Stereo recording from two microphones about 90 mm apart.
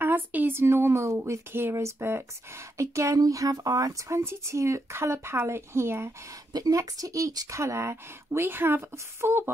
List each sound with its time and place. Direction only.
0.0 s speech: 20° right (ahead or behind)
6.5 s speech: 40° right (ahead or behind)